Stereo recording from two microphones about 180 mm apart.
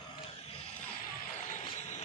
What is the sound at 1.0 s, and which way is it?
Music, 50° left (ahead or behind).